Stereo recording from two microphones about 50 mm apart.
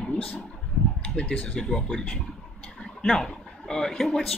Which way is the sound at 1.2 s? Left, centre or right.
Left.